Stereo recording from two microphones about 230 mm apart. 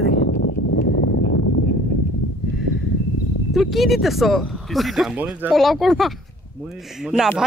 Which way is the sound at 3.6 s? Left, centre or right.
Centre.